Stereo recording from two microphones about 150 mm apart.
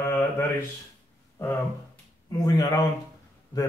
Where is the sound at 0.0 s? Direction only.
15° left (ahead or behind).